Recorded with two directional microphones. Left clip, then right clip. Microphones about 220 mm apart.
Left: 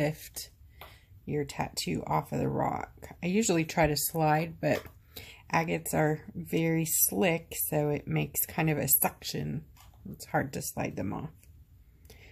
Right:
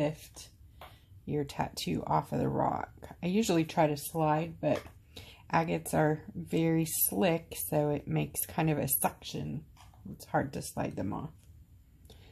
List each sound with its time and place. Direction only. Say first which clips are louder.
0.0 s speech: left 1 dB; 20° left (ahead or behind)
1.2 s speech: left 1 dB; 10° left (ahead or behind)
9.2 s speech: left 4 dB; 20° left (ahead or behind)